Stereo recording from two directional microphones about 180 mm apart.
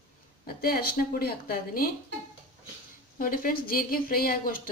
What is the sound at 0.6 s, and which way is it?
A woman's voice, 55° left (ahead or behind).